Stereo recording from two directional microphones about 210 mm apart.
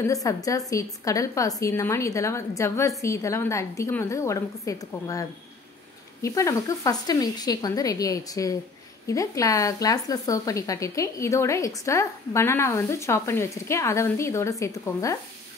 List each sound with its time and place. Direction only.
0.1 s a woman's voice: 15° left (ahead or behind)
6.2 s a woman's voice: 15° left (ahead or behind)